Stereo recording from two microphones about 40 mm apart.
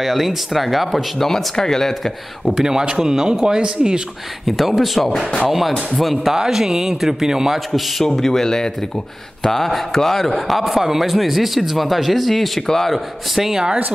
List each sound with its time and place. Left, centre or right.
0.0 s speech: centre
1.3 s speech: centre
2.5 s speech: centre
4.5 s speech: centre
6.3 s speech: centre
8.0 s speech: centre